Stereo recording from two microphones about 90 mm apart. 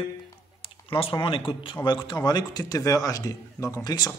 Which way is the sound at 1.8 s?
55° left (ahead or behind).